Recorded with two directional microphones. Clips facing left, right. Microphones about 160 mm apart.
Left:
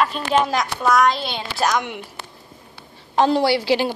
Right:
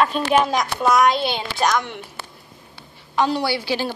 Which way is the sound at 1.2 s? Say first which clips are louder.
Right 3 dB; 5° right (ahead or behind).